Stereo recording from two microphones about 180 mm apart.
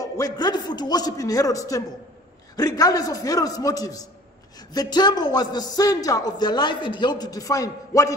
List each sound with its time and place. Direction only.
0.0 s speech: 20° left (ahead or behind)